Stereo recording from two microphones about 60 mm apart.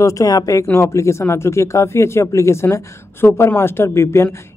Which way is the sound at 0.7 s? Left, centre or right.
Left.